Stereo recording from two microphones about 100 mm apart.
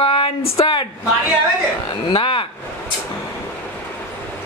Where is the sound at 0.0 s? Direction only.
65° left (ahead or behind).